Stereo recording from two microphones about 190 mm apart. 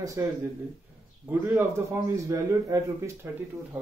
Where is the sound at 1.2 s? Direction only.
10° right (ahead or behind).